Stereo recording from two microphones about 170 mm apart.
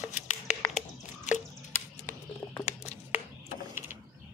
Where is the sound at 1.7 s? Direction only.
15° left (ahead or behind).